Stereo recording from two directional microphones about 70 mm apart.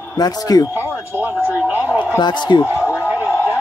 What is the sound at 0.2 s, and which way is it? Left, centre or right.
Speech, left.